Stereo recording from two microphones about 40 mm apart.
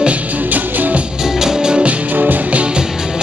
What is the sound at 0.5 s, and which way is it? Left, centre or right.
Music, right.